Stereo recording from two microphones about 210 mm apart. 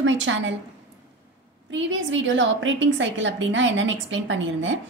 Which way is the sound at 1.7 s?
60° right (ahead or behind).